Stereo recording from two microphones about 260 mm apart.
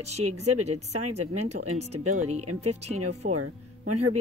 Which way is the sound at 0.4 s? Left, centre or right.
Right.